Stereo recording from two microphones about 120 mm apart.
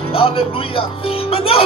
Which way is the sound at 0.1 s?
50° left (ahead or behind).